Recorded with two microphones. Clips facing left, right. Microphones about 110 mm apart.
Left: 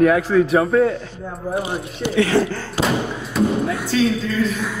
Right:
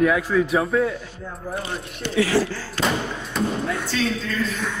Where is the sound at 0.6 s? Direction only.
55° left (ahead or behind).